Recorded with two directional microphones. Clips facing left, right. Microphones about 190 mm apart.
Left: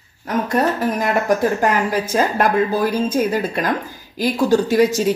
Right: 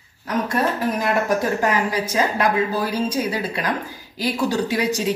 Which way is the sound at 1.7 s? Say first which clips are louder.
Left 3 dB; 50° left (ahead or behind).